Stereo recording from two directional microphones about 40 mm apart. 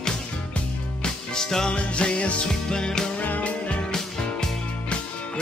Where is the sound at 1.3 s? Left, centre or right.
Centre.